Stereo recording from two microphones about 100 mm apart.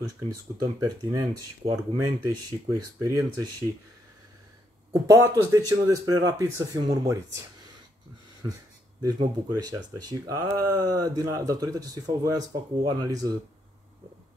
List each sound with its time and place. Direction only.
0.6 s speech: 35° right (ahead or behind)
5.0 s speech: 30° right (ahead or behind)
9.0 s speech: 40° right (ahead or behind)